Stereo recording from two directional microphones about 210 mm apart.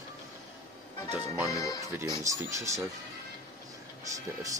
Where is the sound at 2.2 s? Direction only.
15° right (ahead or behind).